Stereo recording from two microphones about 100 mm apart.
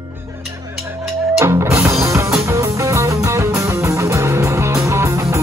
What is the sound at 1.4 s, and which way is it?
Music, 30° right (ahead or behind).